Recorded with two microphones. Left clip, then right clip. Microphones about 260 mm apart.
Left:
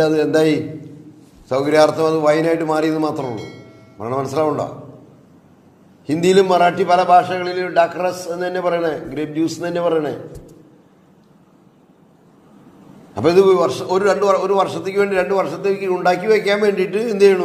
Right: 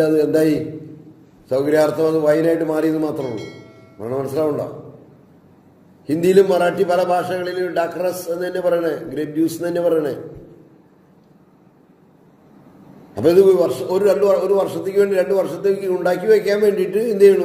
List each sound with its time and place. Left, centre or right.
0.0 s a man's voice: centre
3.2 s speech: centre
4.0 s a man's voice: left
6.0 s a man's voice: centre
13.3 s a man's voice: centre